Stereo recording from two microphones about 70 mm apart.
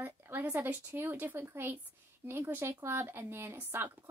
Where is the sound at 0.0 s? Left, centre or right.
Right.